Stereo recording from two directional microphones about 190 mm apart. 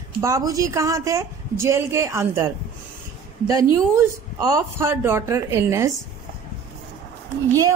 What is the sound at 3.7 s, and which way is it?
A woman's voice, 20° right (ahead or behind).